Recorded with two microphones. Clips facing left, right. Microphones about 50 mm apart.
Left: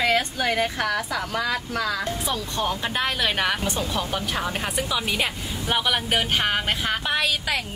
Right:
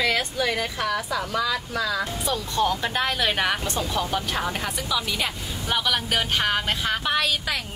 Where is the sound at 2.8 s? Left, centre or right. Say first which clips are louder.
Even; centre.